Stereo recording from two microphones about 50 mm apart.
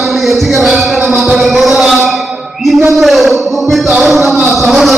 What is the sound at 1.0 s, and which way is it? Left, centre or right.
Music, right.